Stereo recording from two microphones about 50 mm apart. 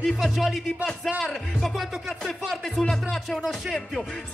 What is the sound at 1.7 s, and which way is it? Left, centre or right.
Music, centre.